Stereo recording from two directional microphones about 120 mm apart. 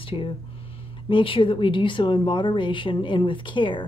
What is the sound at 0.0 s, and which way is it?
A woman's voice, 45° left (ahead or behind).